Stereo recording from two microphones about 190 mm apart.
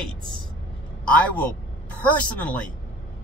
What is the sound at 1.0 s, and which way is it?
A man's voice, 5° left (ahead or behind).